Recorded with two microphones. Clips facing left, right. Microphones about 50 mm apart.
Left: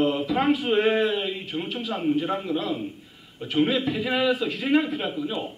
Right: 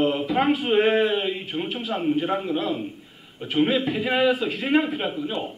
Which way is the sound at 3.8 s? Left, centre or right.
Right.